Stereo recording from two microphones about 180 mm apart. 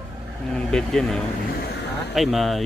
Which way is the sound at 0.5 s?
5° left (ahead or behind).